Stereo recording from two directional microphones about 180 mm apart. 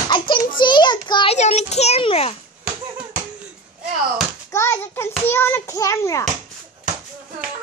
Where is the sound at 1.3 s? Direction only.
40° left (ahead or behind).